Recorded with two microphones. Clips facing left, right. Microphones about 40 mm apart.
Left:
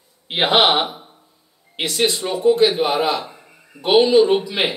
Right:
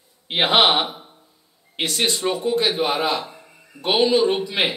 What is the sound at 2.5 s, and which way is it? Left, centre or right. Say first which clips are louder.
A man's voice: left 7 dB; centre.